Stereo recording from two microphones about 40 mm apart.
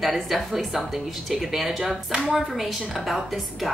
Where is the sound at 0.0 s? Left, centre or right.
Centre.